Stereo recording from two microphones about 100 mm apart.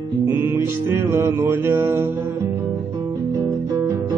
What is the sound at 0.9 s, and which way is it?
Music, 25° right (ahead or behind).